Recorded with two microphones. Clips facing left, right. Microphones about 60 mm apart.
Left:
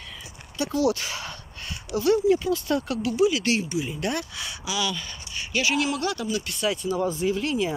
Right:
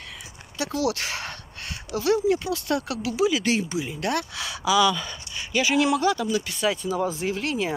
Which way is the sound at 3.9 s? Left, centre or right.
Right.